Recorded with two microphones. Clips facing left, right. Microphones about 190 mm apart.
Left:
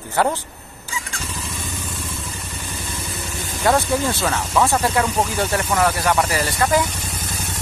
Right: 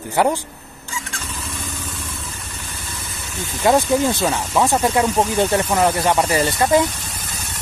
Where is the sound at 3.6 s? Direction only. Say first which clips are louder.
Right 3 dB; 15° right (ahead or behind).